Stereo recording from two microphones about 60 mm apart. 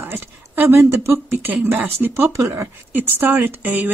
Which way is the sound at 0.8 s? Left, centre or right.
Right.